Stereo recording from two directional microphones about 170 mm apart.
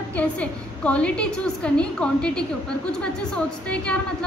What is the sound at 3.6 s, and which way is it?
Speech, 5° left (ahead or behind).